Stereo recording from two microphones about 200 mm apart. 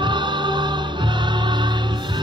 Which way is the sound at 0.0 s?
25° right (ahead or behind).